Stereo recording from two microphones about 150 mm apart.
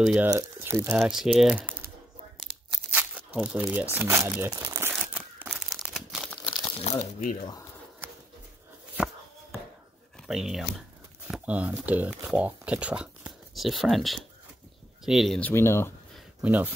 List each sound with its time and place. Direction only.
0.0 s speech: 5° right (ahead or behind)
0.3 s speech: 20° right (ahead or behind)
0.9 s speech: 5° right (ahead or behind)
2.7 s tearing: 10° right (ahead or behind)
3.9 s speech: 15° right (ahead or behind)
4.9 s crumpling: 10° right (ahead or behind)
6.7 s speech: 45° left (ahead or behind)
10.2 s speech: 5° right (ahead or behind)
15.5 s speech: 15° left (ahead or behind)
16.3 s speech: 10° right (ahead or behind)